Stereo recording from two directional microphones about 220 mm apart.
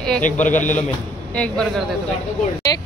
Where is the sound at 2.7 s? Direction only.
15° left (ahead or behind).